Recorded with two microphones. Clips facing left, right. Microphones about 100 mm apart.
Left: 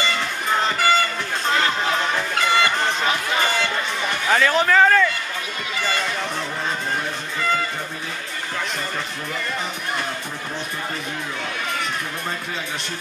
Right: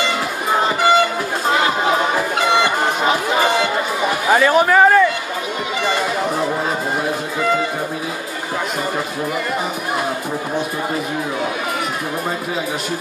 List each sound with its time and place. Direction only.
0.1 s music: 10° right (ahead or behind)
3.4 s run: 15° right (ahead or behind)